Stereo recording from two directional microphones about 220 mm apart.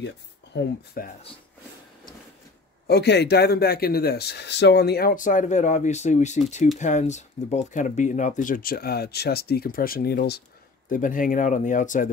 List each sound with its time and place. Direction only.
0.0 s speech: 45° left (ahead or behind)
2.9 s speech: 50° left (ahead or behind)